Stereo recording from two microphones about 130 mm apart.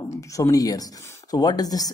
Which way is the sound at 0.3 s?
25° left (ahead or behind).